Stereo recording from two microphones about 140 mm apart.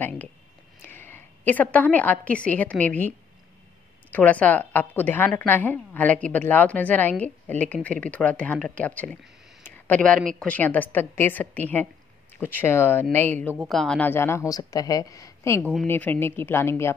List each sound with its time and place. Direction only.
0.8 s a woman's voice: 15° left (ahead or behind)
13.7 s a woman's voice: 5° left (ahead or behind)